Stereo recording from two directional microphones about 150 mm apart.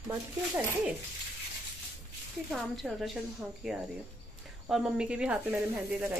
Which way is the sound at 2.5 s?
Centre (ahead or behind).